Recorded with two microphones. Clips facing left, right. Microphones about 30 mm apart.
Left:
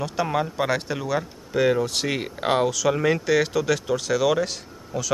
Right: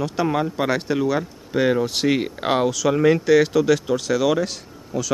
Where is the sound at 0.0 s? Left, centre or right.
Centre.